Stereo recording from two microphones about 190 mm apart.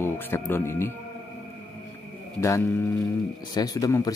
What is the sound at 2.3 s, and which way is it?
Speech, 15° left (ahead or behind).